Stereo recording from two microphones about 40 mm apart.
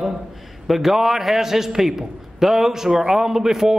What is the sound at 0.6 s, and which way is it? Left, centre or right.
A man's voice, centre.